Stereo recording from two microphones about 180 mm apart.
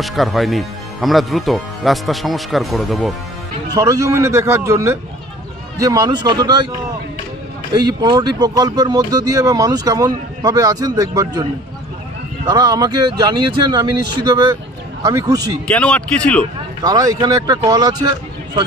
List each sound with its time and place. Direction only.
0.0 s speech: centre (ahead or behind)
3.7 s a man's voice: 20° right (ahead or behind)
7.7 s speech: 25° right (ahead or behind)
12.4 s speech: 20° right (ahead or behind)
15.6 s speech: 5° left (ahead or behind)
16.8 s speech: 20° right (ahead or behind)